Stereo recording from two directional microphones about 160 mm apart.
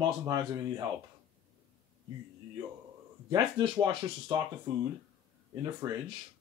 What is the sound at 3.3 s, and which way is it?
Speech, 25° right (ahead or behind).